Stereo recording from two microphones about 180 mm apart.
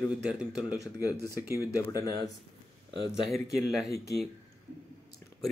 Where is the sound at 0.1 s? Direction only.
5° right (ahead or behind).